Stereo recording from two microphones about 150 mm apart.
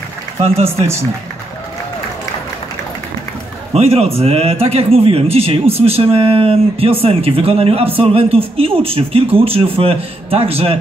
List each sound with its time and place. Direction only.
0.7 s a man's voice: 20° right (ahead or behind)
3.7 s speech: 45° right (ahead or behind)